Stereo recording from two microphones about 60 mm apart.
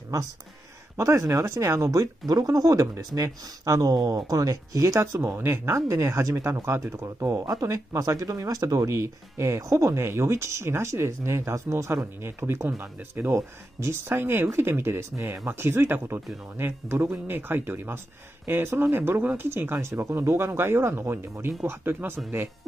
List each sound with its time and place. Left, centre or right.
0.9 s speech: right
7.3 s speech: right
13.3 s speech: right
14.1 s speech: right